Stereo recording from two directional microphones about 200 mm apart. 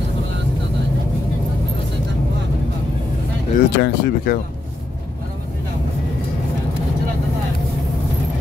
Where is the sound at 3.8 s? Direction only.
50° left (ahead or behind).